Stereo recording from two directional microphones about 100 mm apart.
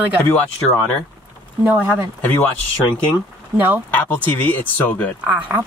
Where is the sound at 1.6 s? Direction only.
15° right (ahead or behind).